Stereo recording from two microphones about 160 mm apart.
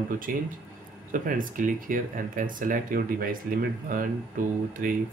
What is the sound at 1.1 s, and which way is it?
Speech, 60° right (ahead or behind).